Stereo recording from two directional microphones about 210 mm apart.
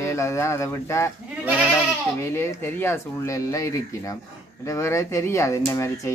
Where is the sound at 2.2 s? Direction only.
15° left (ahead or behind).